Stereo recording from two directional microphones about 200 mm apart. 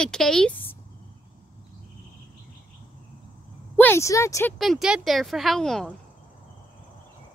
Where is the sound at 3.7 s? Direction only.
10° left (ahead or behind).